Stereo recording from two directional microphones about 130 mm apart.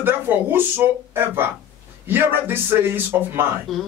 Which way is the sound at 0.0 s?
15° right (ahead or behind).